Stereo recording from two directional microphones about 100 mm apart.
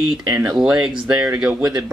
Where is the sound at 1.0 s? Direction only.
20° right (ahead or behind).